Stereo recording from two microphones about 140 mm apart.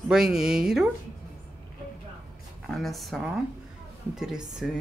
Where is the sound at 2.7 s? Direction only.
Centre (ahead or behind).